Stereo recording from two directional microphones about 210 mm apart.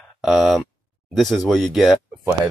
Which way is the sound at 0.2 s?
Centre (ahead or behind).